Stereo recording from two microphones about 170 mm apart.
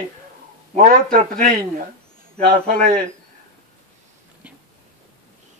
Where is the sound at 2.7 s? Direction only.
55° right (ahead or behind).